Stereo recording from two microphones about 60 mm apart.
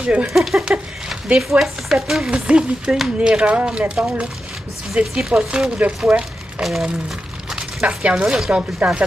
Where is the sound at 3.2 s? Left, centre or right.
Centre.